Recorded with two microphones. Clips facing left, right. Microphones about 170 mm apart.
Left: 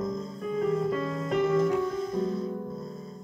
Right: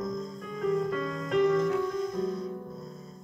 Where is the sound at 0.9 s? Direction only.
30° left (ahead or behind).